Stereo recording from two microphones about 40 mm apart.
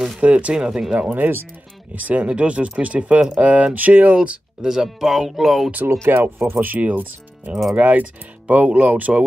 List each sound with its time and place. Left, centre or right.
0.2 s speech: right
0.6 s speech: centre
1.1 s speech: right
2.0 s speech: right
4.1 s speech: right
4.6 s speech: centre
4.8 s speech: centre
6.1 s speech: right
6.8 s speech: right